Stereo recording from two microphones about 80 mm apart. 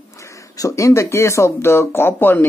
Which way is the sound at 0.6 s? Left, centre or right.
Left.